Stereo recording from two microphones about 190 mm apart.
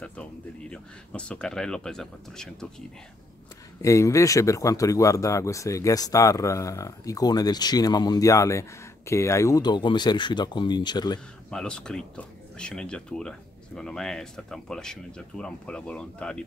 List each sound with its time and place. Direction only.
0.0 s speech: 5° left (ahead or behind)
3.8 s speech: 15° left (ahead or behind)
11.5 s speech: 5° left (ahead or behind)